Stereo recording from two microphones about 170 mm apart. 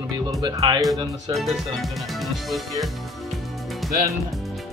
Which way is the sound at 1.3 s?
Centre (ahead or behind).